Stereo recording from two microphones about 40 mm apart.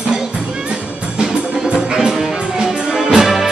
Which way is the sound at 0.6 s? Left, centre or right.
Right.